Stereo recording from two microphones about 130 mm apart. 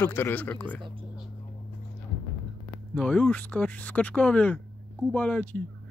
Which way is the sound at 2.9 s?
10° left (ahead or behind).